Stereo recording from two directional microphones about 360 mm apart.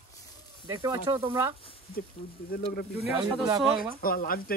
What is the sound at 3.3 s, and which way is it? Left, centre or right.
Speech, centre.